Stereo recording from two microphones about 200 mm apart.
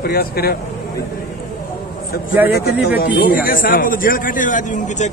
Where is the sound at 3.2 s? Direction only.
45° left (ahead or behind).